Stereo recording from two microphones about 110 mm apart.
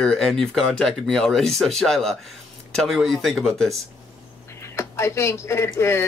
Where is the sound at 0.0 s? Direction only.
5° left (ahead or behind).